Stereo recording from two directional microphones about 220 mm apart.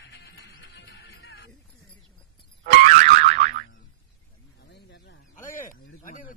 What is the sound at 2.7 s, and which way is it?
Boing, 35° right (ahead or behind).